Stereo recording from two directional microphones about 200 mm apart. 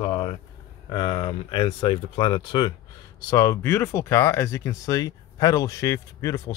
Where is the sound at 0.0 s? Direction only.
25° left (ahead or behind).